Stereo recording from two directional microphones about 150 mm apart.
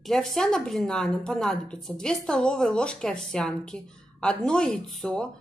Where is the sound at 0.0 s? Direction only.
Centre (ahead or behind).